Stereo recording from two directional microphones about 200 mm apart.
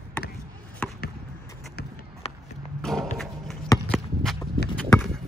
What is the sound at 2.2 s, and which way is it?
Run, 30° left (ahead or behind).